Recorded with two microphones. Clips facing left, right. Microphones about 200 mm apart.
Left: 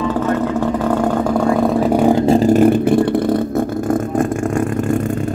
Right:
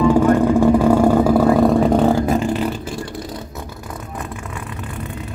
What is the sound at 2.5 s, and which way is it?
Vehicle, 55° left (ahead or behind).